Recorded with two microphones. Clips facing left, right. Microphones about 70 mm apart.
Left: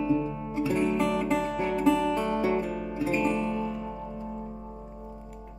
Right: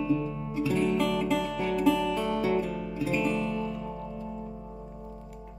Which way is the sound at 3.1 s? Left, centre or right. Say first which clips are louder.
Left 1 dB; centre.